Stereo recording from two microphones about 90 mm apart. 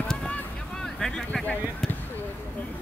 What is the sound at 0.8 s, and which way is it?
Speech, 5° left (ahead or behind).